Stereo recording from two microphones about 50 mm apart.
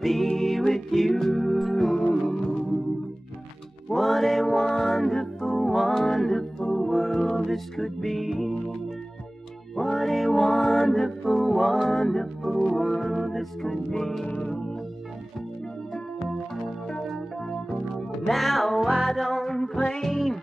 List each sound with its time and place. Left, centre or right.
0.0 s music: centre
3.9 s music: centre
9.8 s music: centre
14.2 s music: left
14.5 s organ: centre
17.1 s music: centre